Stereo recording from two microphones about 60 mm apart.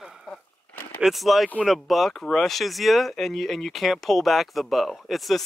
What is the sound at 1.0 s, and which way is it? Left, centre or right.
Speech, centre.